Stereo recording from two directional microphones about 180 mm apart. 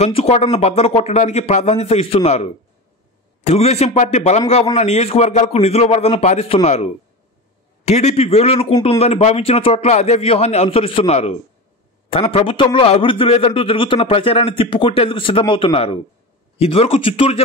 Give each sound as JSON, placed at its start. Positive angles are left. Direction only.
{"t": 0.0, "sound": "a man's voice", "side_deg": 35}